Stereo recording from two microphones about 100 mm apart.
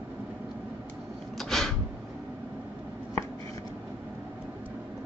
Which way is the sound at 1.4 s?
5° left (ahead or behind).